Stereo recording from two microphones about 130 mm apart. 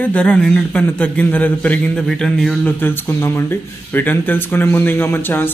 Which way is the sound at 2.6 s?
15° left (ahead or behind).